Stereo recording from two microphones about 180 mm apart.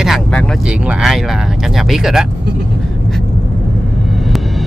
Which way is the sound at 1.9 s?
5° right (ahead or behind).